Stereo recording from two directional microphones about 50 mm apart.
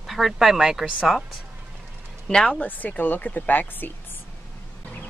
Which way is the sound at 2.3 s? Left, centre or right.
Centre.